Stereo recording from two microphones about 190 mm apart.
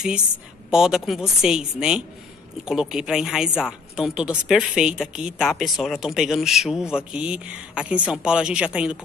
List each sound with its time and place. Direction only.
0.7 s speech: 5° right (ahead or behind)